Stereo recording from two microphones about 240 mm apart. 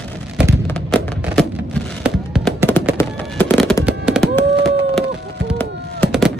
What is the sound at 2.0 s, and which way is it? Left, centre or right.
Fireworks, centre.